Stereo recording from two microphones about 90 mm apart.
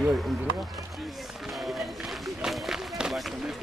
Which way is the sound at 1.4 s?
Centre (ahead or behind).